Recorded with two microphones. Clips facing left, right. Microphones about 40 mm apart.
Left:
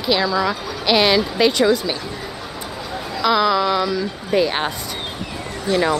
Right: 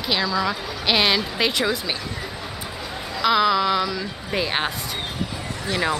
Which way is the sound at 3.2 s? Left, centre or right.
Centre.